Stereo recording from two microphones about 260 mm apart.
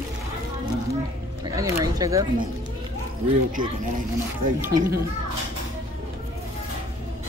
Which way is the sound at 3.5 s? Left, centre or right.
Right.